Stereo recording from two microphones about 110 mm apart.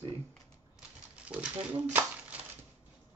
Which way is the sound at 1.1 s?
10° right (ahead or behind).